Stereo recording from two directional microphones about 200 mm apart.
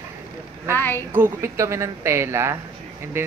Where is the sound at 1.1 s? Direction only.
15° right (ahead or behind).